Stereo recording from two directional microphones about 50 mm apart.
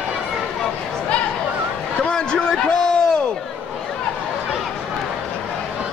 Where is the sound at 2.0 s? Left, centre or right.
Centre.